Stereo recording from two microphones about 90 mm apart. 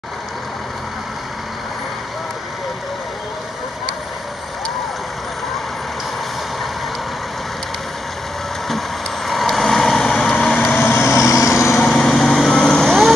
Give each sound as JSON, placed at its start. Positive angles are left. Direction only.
{"t": 8.6, "sound": "vehicle", "side_deg": 0}
{"t": 11.1, "sound": "vehicle", "side_deg": 35}
{"t": 11.8, "sound": "vehicle", "side_deg": 5}